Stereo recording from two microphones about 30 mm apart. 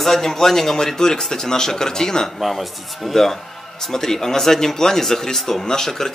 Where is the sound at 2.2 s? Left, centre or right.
Centre.